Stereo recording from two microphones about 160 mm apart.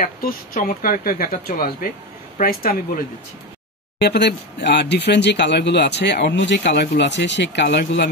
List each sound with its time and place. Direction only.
0.0 s speech: 60° left (ahead or behind)
4.0 s speech: 90° left